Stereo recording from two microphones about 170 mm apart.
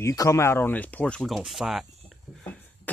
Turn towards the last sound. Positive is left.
turn(degrees=10)  # may be behind; listen again after turning